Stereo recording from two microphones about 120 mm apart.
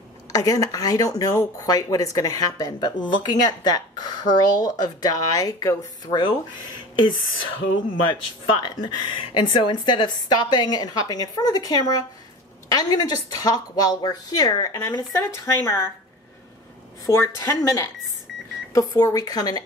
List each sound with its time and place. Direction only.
0.3 s speech: 30° left (ahead or behind)
8.0 s speech: 40° left (ahead or behind); by 15.8 s 25° left (ahead or behind)
17.0 s speech: 25° left (ahead or behind)